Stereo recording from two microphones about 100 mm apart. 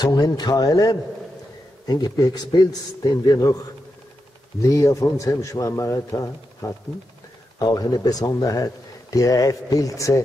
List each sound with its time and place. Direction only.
0.0 s speech: 40° left (ahead or behind)